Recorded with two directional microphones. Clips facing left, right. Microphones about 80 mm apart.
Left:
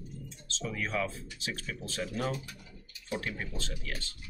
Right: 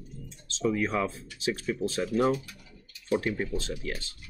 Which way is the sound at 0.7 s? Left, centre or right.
Right.